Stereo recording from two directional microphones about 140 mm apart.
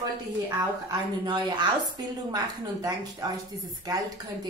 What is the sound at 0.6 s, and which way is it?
A woman's voice, 30° right (ahead or behind).